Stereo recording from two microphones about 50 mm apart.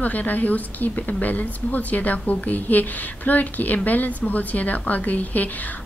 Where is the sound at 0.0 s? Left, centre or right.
Left.